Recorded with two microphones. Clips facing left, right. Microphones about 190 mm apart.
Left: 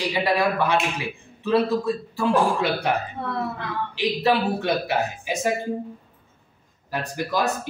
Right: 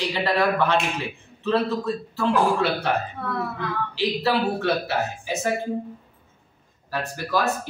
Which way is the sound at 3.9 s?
15° left (ahead or behind).